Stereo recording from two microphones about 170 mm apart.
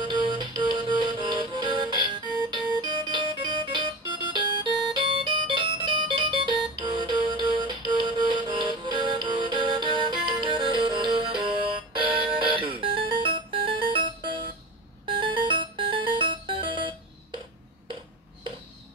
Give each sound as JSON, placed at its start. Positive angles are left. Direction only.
{"t": 0.0, "sound": "music", "side_deg": -25}